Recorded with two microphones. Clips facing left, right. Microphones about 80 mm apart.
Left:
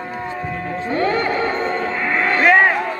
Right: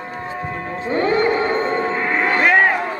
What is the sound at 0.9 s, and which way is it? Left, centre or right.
Music, centre.